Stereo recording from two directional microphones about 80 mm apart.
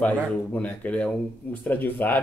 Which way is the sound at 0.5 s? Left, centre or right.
Centre.